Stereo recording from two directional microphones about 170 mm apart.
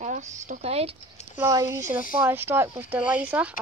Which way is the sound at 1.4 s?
15° right (ahead or behind).